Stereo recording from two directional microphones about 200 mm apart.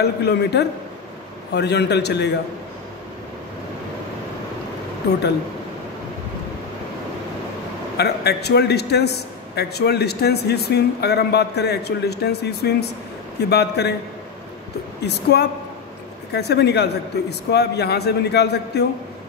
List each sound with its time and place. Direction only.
0.0 s a man's voice: 55° left (ahead or behind)
8.0 s a man's voice: 55° left (ahead or behind)
15.0 s a man's voice: 55° left (ahead or behind)